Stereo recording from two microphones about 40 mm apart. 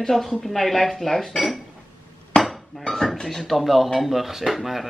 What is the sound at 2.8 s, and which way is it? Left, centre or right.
Speech, centre.